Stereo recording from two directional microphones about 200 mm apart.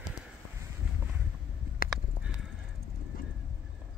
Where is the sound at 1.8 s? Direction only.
45° left (ahead or behind).